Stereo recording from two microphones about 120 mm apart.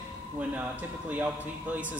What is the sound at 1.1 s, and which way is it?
Speech, 15° right (ahead or behind).